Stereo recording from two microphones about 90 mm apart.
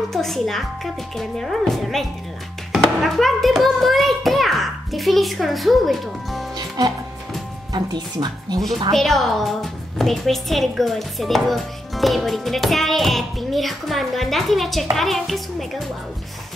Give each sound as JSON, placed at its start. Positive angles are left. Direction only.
{"t": 0.1, "sound": "a woman's voice", "side_deg": 5}
{"t": 7.7, "sound": "speech", "side_deg": -50}
{"t": 8.9, "sound": "a woman's voice", "side_deg": 0}